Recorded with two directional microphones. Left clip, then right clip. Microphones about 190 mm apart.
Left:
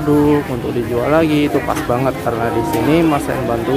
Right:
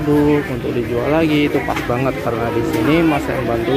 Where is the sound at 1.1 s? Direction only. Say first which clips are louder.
Left 2 dB; 15° left (ahead or behind).